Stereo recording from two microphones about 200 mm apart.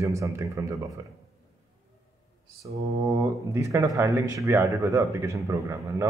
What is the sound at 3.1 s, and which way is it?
Speech, 15° right (ahead or behind).